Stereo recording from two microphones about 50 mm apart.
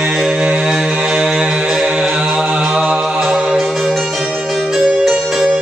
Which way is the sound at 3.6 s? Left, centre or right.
Centre.